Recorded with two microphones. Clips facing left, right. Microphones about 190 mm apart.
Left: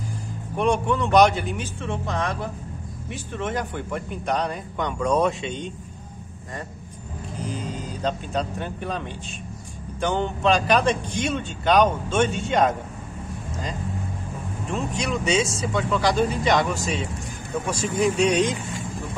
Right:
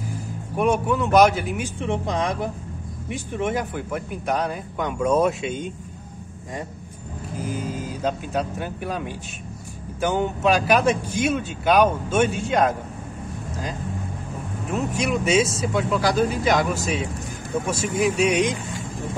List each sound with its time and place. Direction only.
0.6 s speech: 5° right (ahead or behind)
1.8 s speech: 15° right (ahead or behind)
7.3 s speech: 5° right (ahead or behind)
14.7 s speech: 5° right (ahead or behind)